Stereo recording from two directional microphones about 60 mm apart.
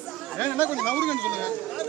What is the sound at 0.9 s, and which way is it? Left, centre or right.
Speech, centre.